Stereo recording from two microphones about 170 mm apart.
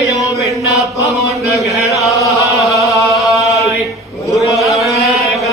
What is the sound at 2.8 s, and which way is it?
Chant, centre (ahead or behind).